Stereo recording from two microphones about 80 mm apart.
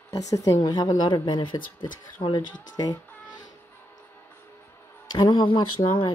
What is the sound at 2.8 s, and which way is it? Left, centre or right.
Music, left.